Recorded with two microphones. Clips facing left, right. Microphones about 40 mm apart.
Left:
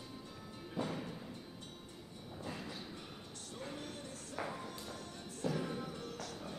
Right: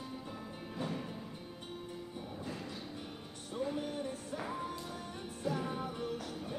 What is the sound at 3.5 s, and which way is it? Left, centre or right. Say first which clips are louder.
Music: right 9 dB; centre.